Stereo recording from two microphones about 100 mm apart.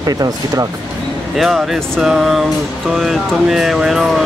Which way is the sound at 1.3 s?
Centre (ahead or behind).